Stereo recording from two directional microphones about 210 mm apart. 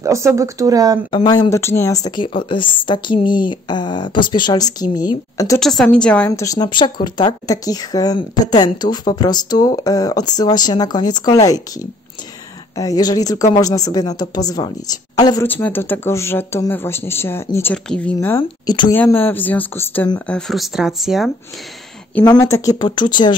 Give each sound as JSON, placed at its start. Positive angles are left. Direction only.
{"t": 0.0, "sound": "speech", "side_deg": -15}
{"t": 1.1, "sound": "a woman's voice", "side_deg": 20}
{"t": 5.6, "sound": "a woman's voice", "side_deg": 0}
{"t": 15.4, "sound": "a woman's voice", "side_deg": 10}
{"t": 18.7, "sound": "a woman's voice", "side_deg": 20}
{"t": 18.9, "sound": "a woman's voice", "side_deg": 10}
{"t": 22.2, "sound": "a woman's voice", "side_deg": 15}